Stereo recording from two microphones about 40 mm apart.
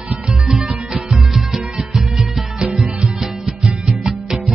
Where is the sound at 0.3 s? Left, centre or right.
Centre.